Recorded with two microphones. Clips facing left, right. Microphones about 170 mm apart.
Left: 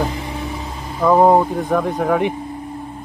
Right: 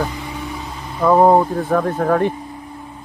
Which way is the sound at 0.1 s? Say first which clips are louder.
Left 2 dB; 30° left (ahead or behind).